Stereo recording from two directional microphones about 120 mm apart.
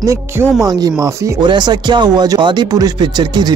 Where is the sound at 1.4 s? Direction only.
40° right (ahead or behind).